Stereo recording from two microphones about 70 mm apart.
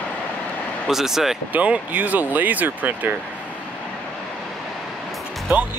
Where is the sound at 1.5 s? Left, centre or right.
Right.